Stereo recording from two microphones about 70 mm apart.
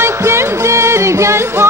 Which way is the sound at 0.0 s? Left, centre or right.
Right.